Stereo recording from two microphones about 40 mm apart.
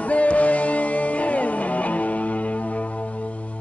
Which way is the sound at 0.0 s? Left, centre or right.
Left.